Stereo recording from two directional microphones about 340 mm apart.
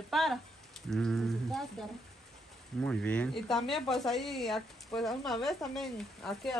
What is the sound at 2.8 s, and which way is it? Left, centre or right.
Speech, centre.